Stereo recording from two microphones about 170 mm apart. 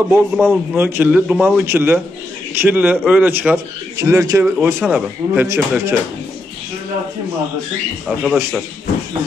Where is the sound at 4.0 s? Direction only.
20° right (ahead or behind).